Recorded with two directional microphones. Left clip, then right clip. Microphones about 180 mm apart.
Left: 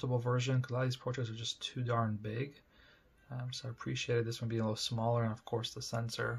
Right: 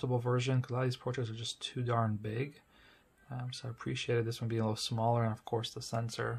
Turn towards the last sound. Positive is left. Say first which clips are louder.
# right 1 dB
turn(degrees=-20)  # may be behind; listen again after turning